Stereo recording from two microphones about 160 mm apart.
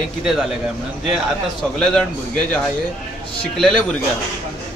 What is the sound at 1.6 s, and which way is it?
A man's voice, 5° left (ahead or behind).